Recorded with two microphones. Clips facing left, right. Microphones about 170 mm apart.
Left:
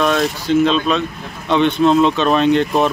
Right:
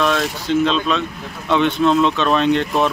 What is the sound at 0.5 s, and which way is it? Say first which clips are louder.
Speech: left 2 dB; centre (ahead or behind).